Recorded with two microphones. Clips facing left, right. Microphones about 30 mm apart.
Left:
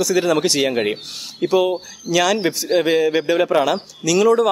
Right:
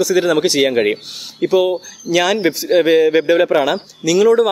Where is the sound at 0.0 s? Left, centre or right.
Centre.